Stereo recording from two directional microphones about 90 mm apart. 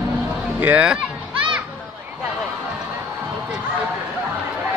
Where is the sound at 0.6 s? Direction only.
15° right (ahead or behind).